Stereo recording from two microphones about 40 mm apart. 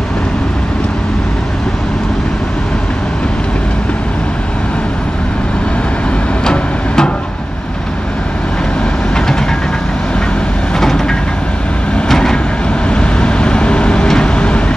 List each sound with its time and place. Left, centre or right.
6.4 s a sound: centre
10.8 s train: centre
12.1 s vehicle: centre
12.9 s vehicle: left